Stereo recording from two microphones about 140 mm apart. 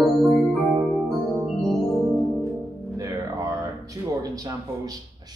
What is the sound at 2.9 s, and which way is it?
Music, 25° right (ahead or behind).